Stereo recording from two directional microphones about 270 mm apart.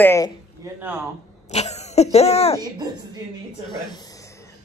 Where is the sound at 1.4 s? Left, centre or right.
Left.